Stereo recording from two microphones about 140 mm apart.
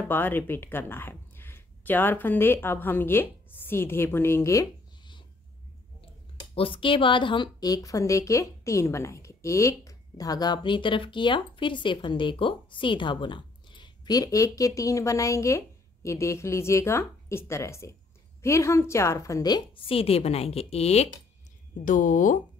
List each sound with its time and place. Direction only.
0.1 s speech: 15° left (ahead or behind)
6.5 s a woman's voice: 40° left (ahead or behind)
21.8 s speech: 70° left (ahead or behind)